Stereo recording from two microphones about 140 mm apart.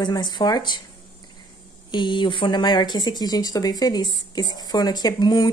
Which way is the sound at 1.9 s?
35° left (ahead or behind).